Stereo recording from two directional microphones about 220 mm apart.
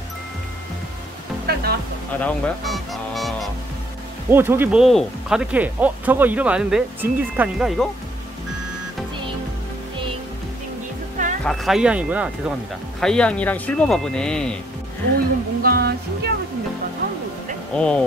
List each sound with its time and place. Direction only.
1.5 s music: 45° right (ahead or behind)
2.1 s speech: 5° left (ahead or behind)
11.4 s speech: centre (ahead or behind)
15.1 s a sound: 45° right (ahead or behind)
17.7 s speech: 5° left (ahead or behind)